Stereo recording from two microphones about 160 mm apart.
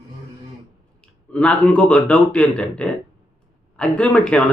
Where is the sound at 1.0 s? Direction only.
5° left (ahead or behind).